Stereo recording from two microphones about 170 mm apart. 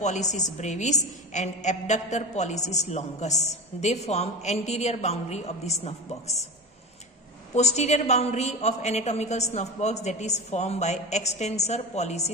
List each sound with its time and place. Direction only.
0.0 s a woman's voice: 45° left (ahead or behind)
7.5 s a woman's voice: 40° left (ahead or behind)